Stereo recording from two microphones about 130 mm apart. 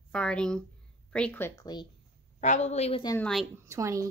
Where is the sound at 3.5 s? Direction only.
20° right (ahead or behind).